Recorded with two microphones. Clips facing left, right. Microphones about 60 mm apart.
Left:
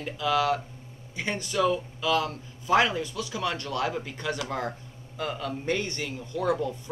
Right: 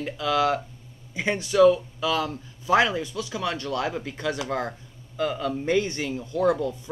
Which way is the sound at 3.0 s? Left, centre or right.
Right.